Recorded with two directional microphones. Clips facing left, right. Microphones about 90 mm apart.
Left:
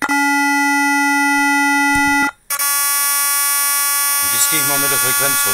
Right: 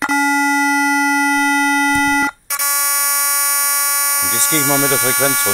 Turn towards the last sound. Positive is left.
turn(degrees=0)  # may be behind; listen again after turning